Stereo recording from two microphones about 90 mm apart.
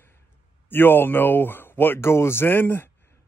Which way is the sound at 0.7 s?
25° left (ahead or behind).